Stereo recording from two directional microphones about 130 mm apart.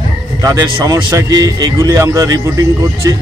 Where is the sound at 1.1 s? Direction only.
30° right (ahead or behind).